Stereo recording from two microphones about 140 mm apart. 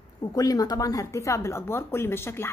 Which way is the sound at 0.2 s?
25° left (ahead or behind).